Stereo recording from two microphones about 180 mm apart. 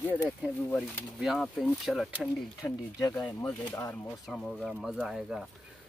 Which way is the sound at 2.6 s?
15° left (ahead or behind).